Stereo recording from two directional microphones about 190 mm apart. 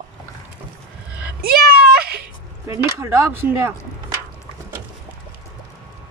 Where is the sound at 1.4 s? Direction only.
55° right (ahead or behind).